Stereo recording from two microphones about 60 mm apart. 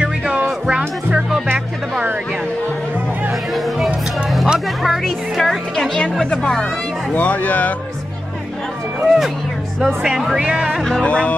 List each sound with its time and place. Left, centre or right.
1.5 s music: right
3.5 s music: centre
4.8 s a woman's voice: centre
7.2 s speech: left
9.0 s music: centre
10.0 s a woman's voice: centre
10.4 s speech: centre
10.8 s speech: centre
11.1 s speech: left